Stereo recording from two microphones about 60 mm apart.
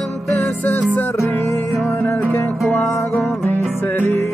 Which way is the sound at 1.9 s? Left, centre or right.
Left.